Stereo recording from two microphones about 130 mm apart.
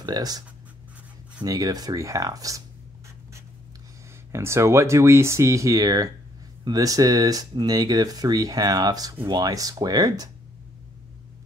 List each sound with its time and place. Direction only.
0.0 s speech: 30° right (ahead or behind)
1.4 s speech: 30° right (ahead or behind)
4.3 s speech: 20° right (ahead or behind)